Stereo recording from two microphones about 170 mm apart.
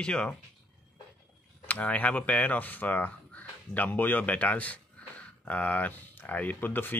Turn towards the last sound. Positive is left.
turn(degrees=10)  # may be behind; listen again after turning